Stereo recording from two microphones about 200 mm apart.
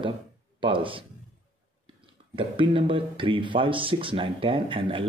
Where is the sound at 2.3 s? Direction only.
25° right (ahead or behind).